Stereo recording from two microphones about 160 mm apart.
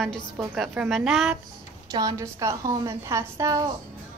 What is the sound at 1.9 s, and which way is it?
A woman's voice, 25° right (ahead or behind).